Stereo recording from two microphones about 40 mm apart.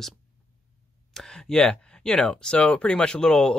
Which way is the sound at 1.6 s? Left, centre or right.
Centre.